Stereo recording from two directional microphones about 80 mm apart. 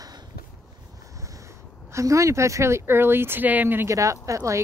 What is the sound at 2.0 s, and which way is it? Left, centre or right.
Speech, right.